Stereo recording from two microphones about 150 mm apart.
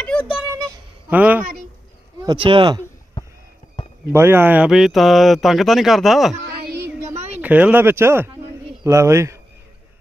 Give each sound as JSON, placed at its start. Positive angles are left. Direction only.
{"t": 0.0, "sound": "a sound", "side_deg": 5}
{"t": 1.1, "sound": "speech", "side_deg": -10}
{"t": 2.2, "sound": "speech", "side_deg": -35}
{"t": 4.1, "sound": "speech", "side_deg": -15}
{"t": 7.4, "sound": "speech", "side_deg": -10}